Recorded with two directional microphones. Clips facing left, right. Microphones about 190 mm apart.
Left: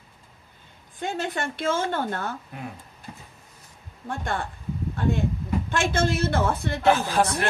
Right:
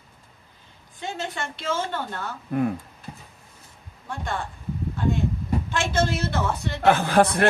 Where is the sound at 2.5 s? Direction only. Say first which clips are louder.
Right 15 dB; 55° right (ahead or behind).